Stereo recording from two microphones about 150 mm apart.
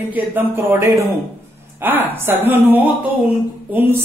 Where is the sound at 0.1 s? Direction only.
15° right (ahead or behind).